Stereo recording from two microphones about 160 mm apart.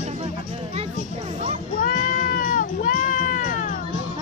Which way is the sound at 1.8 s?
55° left (ahead or behind).